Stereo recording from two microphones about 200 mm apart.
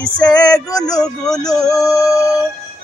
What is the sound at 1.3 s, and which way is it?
Music, 20° left (ahead or behind).